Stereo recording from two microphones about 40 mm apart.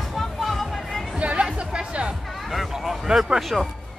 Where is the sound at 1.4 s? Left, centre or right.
Right.